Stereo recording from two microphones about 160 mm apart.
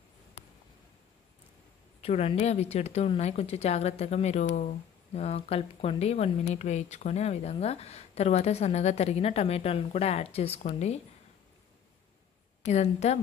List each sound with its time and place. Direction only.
2.0 s speech: 40° left (ahead or behind)
12.6 s a woman's voice: 45° left (ahead or behind)